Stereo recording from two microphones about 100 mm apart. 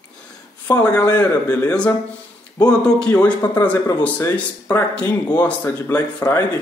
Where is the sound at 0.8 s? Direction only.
15° left (ahead or behind).